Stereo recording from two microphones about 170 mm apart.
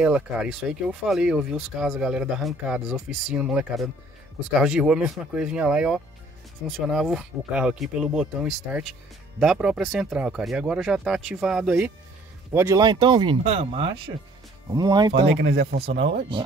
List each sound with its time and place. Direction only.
0.0 s speech: 5° right (ahead or behind)
12.5 s speech: 20° right (ahead or behind)
15.4 s speech: 80° right
16.3 s speech: 30° right (ahead or behind)